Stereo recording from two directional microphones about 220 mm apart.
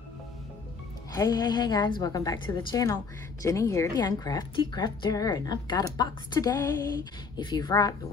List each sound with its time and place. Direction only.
1.1 s a woman's voice: 15° left (ahead or behind)